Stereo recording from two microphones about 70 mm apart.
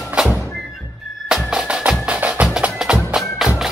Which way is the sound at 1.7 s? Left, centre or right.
Centre.